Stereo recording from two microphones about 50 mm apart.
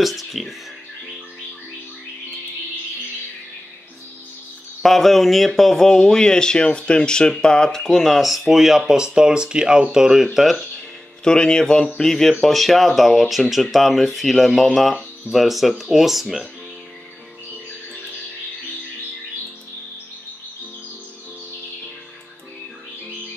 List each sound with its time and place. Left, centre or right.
0.0 s speech: centre
4.8 s speech: centre
11.2 s speech: centre